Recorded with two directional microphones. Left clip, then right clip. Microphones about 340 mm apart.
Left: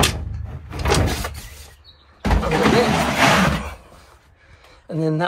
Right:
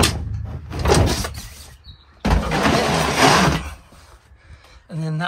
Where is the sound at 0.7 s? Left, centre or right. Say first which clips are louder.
Right 2 dB; right.